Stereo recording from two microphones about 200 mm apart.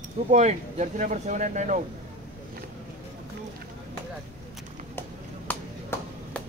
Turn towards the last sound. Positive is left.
turn(degrees=10)  # may be behind; listen again after turning